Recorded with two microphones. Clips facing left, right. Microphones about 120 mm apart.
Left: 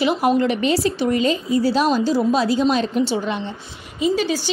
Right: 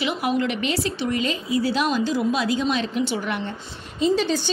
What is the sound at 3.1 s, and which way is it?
Speech, 25° left (ahead or behind).